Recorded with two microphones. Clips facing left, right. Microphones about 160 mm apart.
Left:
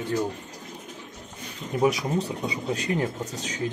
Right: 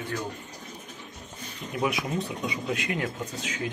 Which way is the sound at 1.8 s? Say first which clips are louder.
Left 5 dB; 40° left (ahead or behind).